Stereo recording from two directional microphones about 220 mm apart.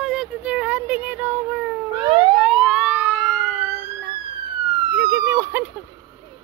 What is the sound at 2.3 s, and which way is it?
Emergency vehicle, centre (ahead or behind).